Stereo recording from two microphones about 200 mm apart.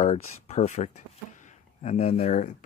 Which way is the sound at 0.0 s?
35° left (ahead or behind).